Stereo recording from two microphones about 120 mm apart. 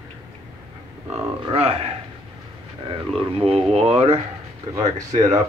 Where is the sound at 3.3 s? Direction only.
55° right (ahead or behind).